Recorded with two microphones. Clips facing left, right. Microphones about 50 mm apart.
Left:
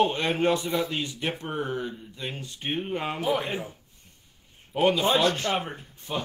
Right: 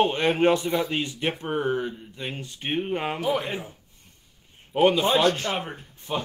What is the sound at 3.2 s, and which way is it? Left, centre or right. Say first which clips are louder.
Speech: left 1 dB; centre.